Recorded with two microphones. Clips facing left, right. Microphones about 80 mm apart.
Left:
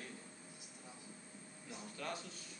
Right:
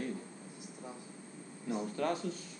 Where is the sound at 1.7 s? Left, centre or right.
Right.